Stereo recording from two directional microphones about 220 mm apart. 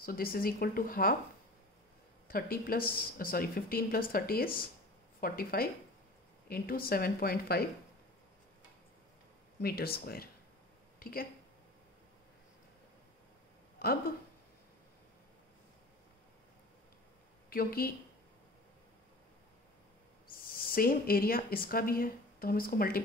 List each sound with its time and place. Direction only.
0.0 s speech: 40° left (ahead or behind)
2.2 s a woman's voice: 40° left (ahead or behind)
9.6 s a woman's voice: 45° left (ahead or behind)
13.7 s speech: 45° left (ahead or behind)
17.5 s speech: 40° left (ahead or behind)
20.5 s speech: 40° left (ahead or behind)